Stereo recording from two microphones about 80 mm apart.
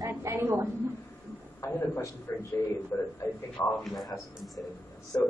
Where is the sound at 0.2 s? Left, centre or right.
Right.